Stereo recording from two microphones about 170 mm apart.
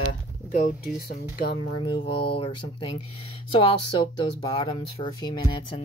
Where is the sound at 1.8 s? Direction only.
30° left (ahead or behind).